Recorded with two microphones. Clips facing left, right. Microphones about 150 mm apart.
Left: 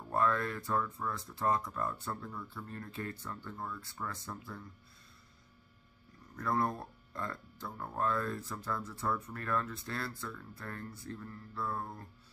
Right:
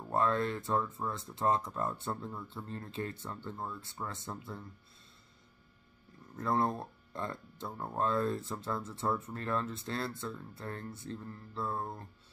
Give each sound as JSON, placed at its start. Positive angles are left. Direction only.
{"t": 0.1, "sound": "speech", "side_deg": -25}
{"t": 6.3, "sound": "speech", "side_deg": -25}